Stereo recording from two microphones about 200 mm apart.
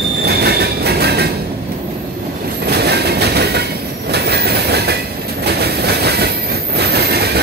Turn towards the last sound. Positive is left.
turn(degrees=-55)  # may be behind; listen again after turning